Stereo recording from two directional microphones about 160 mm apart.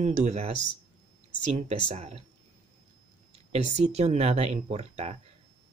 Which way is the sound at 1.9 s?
45° right (ahead or behind).